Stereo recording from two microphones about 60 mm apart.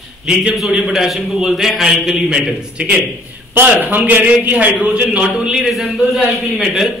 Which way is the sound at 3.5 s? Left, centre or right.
Right.